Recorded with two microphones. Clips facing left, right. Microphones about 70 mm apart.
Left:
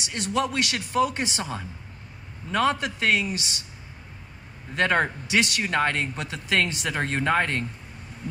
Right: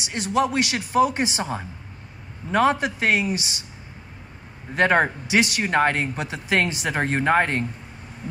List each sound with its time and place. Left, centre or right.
0.0 s speech: centre
4.7 s speech: centre